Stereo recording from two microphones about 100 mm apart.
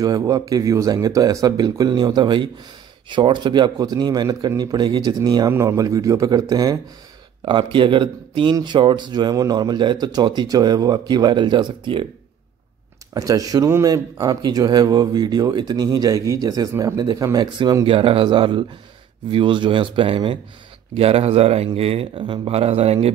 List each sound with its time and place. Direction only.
0.0 s speech: 40° right (ahead or behind)
5.5 s speech: 30° right (ahead or behind)
7.4 s speech: 55° right (ahead or behind)
13.1 s speech: 35° right (ahead or behind)
17.8 s speech: 65° right (ahead or behind)
20.9 s a man's voice: 80° right
21.7 s a man's voice: 80° right
22.2 s speech: 55° right (ahead or behind)
22.5 s a man's voice: 80° right